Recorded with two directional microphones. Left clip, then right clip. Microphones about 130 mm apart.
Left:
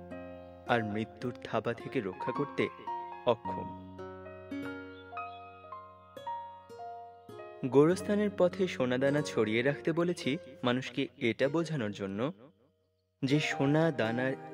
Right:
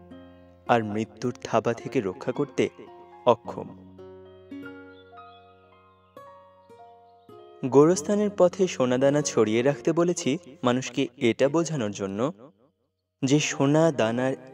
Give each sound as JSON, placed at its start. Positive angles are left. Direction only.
{"t": 0.8, "sound": "speech", "side_deg": -35}
{"t": 7.6, "sound": "speech", "side_deg": -30}
{"t": 13.2, "sound": "speech", "side_deg": -40}